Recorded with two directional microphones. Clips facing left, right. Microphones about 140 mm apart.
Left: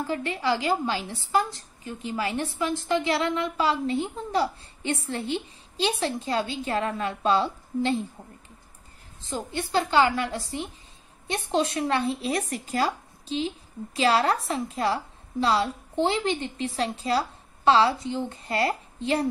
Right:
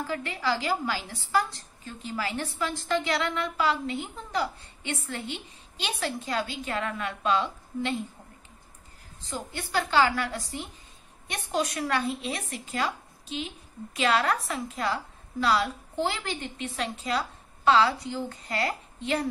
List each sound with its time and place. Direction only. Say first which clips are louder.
0.0 s a woman's voice: left 3 dB; 25° left (ahead or behind)
9.2 s a woman's voice: left 5 dB; 25° left (ahead or behind)